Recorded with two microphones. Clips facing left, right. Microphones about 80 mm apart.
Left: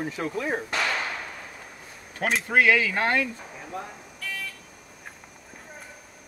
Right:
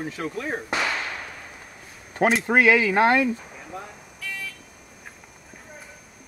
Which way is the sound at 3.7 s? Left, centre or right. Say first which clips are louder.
Left 2 dB; centre.